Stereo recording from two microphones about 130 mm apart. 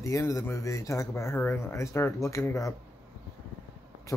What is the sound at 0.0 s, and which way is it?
Speech, 25° left (ahead or behind).